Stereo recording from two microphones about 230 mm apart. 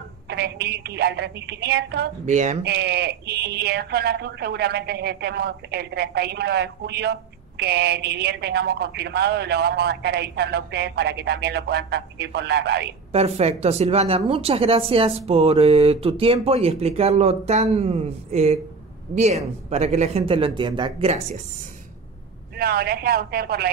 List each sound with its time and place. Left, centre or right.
0.3 s speech: right
2.2 s speech: right
2.6 s speech: right
13.1 s speech: right
22.6 s speech: right